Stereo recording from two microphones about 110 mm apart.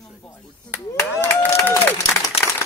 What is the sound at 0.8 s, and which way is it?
Speech, 30° left (ahead or behind).